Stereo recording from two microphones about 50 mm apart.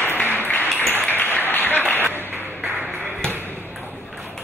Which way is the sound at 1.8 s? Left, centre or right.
Left.